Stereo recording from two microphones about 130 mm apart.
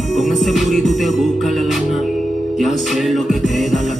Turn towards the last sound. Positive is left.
turn(degrees=0)  # may be behind; listen again after turning